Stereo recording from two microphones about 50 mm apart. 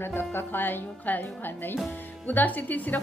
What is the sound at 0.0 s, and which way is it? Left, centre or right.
A woman's voice, left.